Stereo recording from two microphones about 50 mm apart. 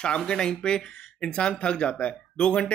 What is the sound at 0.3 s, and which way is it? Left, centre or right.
Speech, centre.